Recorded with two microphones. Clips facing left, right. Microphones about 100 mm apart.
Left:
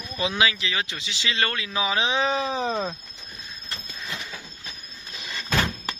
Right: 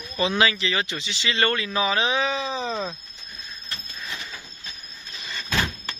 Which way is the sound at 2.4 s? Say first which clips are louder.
Left 2 dB; 50° left (ahead or behind).